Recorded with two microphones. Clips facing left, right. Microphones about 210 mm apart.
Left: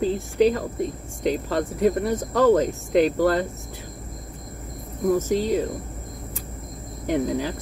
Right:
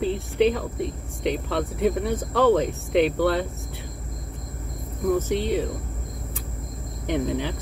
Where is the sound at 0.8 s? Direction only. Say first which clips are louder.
Left 2 dB; 40° left (ahead or behind).